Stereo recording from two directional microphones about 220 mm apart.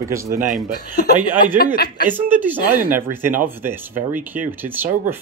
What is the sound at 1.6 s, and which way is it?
Speech, 45° left (ahead or behind).